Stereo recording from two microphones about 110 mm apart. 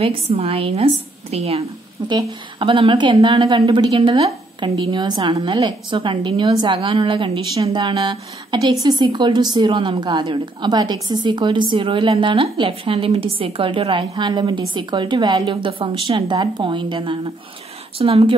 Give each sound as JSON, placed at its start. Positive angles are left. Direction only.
{"t": 0.0, "sound": "a woman's voice", "side_deg": -65}
{"t": 2.0, "sound": "a woman's voice", "side_deg": -45}